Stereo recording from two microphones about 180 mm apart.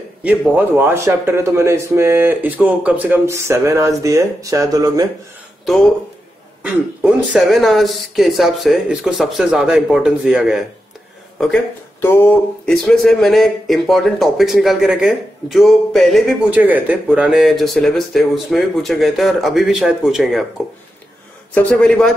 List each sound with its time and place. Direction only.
0.2 s a man's voice: 10° right (ahead or behind)
6.6 s speech: 5° right (ahead or behind)
21.5 s speech: 5° left (ahead or behind)